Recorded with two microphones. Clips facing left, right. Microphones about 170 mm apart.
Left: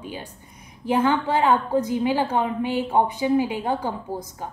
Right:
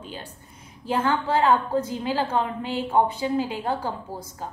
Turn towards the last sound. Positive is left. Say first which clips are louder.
# left 4 dB
turn(degrees=15)  # may be behind; listen again after turning